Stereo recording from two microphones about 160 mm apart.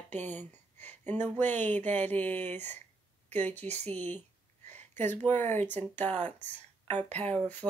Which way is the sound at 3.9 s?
10° left (ahead or behind).